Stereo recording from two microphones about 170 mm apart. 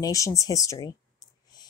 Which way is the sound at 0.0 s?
20° left (ahead or behind).